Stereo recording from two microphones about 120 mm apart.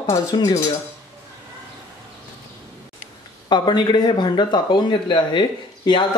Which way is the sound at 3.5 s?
40° left (ahead or behind).